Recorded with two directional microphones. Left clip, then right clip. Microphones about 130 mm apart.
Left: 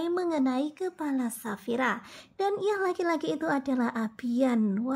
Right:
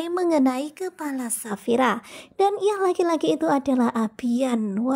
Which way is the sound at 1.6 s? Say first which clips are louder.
Right 8 dB; 40° right (ahead or behind).